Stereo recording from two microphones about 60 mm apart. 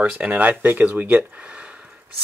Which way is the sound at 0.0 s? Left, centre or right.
Right.